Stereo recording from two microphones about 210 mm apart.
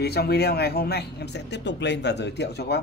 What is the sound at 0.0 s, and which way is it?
Speech, 50° left (ahead or behind).